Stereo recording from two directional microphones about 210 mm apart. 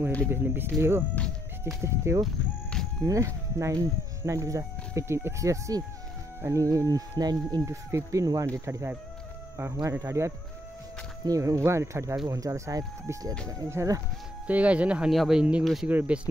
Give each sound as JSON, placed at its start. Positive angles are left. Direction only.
{"t": 0.3, "sound": "speech", "side_deg": -10}